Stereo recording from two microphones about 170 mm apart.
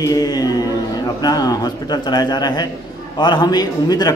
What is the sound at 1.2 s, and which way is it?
A man's voice, 25° left (ahead or behind).